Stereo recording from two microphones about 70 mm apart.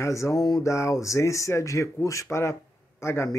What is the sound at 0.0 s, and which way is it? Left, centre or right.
Speech, left.